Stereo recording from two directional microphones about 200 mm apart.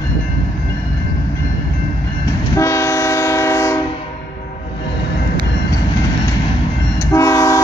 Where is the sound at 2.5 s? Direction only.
15° left (ahead or behind).